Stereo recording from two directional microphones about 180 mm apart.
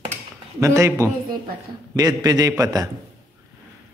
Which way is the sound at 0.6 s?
15° right (ahead or behind).